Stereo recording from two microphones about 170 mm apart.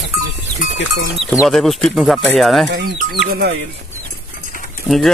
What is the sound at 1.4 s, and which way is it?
Speech, centre (ahead or behind).